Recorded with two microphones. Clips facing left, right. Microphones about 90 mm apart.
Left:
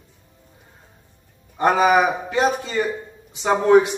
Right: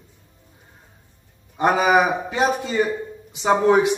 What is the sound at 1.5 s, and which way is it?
Speech, 15° right (ahead or behind).